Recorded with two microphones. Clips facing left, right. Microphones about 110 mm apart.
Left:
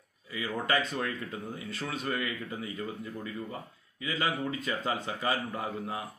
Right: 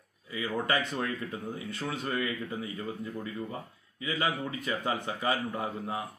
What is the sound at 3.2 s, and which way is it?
A man's voice, 15° right (ahead or behind).